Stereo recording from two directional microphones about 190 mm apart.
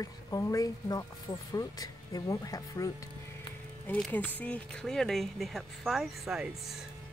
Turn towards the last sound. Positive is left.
turn(degrees=0)  # may be behind; listen again after turning